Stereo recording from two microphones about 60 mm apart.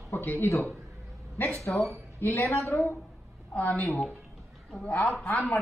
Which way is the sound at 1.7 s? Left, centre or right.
Left.